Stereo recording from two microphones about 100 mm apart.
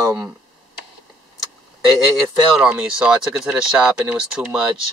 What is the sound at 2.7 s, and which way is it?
Speech, 10° right (ahead or behind).